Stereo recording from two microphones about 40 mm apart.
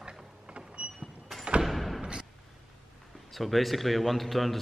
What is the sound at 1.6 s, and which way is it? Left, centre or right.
Thump, centre.